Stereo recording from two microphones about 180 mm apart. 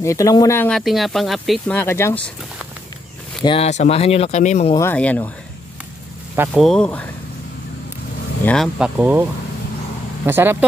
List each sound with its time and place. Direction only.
0.0 s speech: 15° left (ahead or behind)
0.7 s speech: centre (ahead or behind)
3.4 s speech: 35° left (ahead or behind)
4.7 s speech: 10° left (ahead or behind)
6.5 s speech: centre (ahead or behind)
8.5 s speech: centre (ahead or behind)
10.2 s speech: 10° right (ahead or behind)